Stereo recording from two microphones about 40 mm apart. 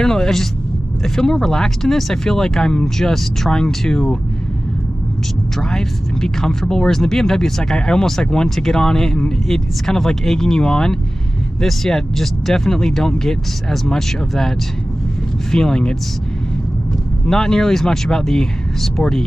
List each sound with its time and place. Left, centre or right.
0.0 s speech: centre
5.6 s speech: centre
15.5 s speech: centre
17.3 s speech: centre